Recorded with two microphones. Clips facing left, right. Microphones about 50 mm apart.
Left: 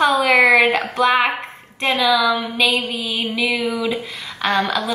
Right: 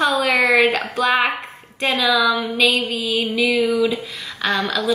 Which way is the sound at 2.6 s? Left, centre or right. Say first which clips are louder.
Right 1 dB; left.